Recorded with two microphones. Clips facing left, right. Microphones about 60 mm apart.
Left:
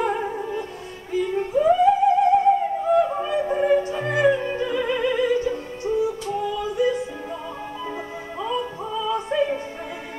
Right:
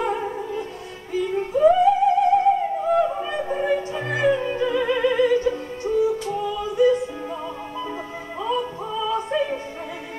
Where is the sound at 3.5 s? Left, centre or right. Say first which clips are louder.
Left 3 dB; centre.